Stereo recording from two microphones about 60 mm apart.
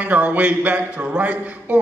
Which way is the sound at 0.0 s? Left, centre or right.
Right.